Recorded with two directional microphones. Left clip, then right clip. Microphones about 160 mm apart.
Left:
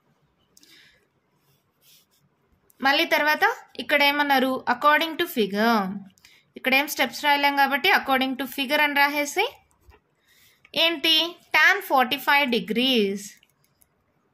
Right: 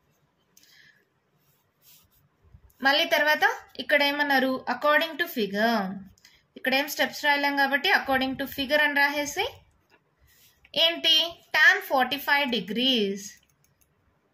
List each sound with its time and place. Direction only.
2.8 s a woman's voice: 45° left (ahead or behind)
10.6 s a woman's voice: 50° left (ahead or behind)